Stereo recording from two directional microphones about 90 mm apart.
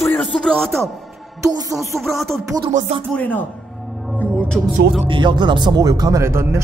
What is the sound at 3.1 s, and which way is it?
A man's voice, 20° left (ahead or behind).